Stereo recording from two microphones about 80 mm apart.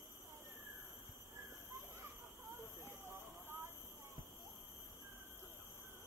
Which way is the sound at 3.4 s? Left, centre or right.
Right.